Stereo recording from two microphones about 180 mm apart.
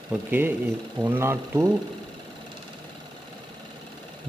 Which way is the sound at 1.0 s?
15° right (ahead or behind).